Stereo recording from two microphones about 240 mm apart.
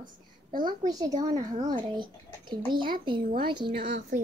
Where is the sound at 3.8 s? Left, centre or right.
Right.